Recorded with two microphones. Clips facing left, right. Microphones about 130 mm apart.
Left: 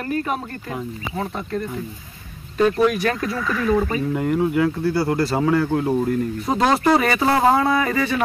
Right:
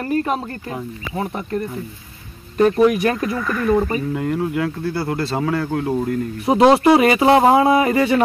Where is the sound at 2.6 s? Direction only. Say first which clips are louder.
Right 3 dB; 20° right (ahead or behind).